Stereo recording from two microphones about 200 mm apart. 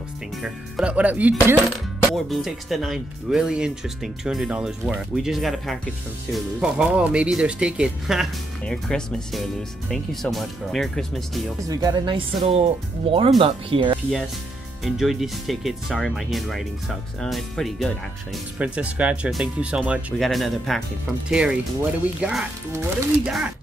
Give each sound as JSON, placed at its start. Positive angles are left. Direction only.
{"t": 0.4, "sound": "speech", "side_deg": -5}
{"t": 2.2, "sound": "speech", "side_deg": 0}
{"t": 11.6, "sound": "speech", "side_deg": -20}
{"t": 14.8, "sound": "speech", "side_deg": 0}